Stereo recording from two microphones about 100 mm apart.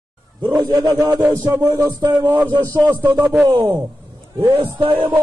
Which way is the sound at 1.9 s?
50° right (ahead or behind).